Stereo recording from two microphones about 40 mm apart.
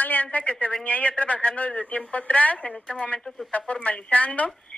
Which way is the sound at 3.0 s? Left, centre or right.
Left.